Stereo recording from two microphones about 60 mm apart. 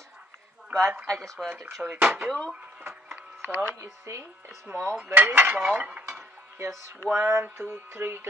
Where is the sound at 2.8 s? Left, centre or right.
Right.